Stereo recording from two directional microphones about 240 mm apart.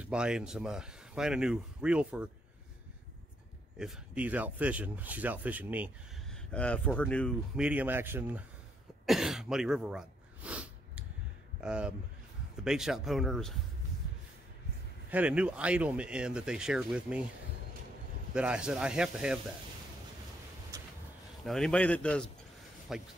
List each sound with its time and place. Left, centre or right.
0.0 s speech: centre
3.7 s speech: centre
6.5 s speech: centre
9.0 s sneeze: centre
11.6 s speech: centre
15.0 s speech: centre
18.3 s speech: centre
21.5 s speech: centre